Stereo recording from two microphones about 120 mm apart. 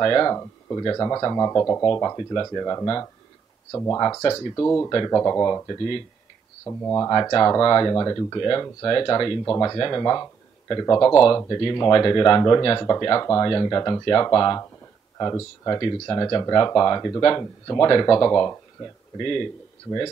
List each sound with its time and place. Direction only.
0.0 s speech: 30° left (ahead or behind)
6.8 s speech: 20° left (ahead or behind)